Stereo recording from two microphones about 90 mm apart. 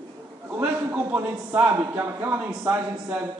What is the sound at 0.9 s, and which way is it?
Speech, 20° right (ahead or behind).